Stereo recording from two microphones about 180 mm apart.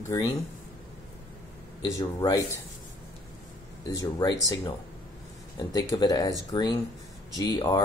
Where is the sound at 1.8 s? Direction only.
20° left (ahead or behind).